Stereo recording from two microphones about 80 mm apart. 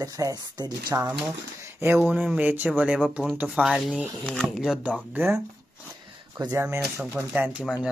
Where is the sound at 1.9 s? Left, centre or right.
Centre.